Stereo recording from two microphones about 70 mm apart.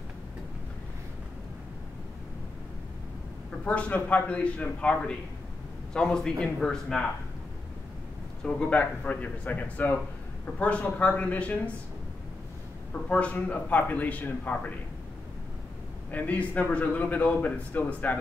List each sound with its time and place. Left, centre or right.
3.6 s a man's voice: centre
8.5 s a man's voice: centre
13.1 s a man's voice: centre
16.1 s a man's voice: left